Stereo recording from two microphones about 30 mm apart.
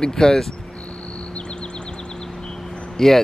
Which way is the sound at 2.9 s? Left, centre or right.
Centre.